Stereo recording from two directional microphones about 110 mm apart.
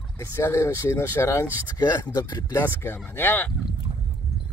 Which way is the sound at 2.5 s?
20° left (ahead or behind).